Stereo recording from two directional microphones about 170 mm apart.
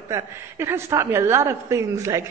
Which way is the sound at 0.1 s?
15° right (ahead or behind).